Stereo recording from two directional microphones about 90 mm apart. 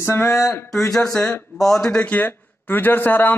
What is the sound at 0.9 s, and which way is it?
Speech, 5° left (ahead or behind).